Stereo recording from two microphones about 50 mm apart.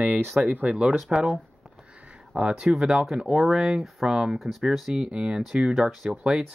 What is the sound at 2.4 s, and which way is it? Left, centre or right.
Speech, centre.